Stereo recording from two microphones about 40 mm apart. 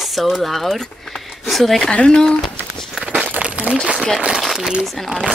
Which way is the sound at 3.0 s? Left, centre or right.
Right.